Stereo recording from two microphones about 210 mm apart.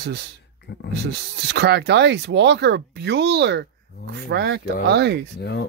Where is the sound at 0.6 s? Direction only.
50° left (ahead or behind).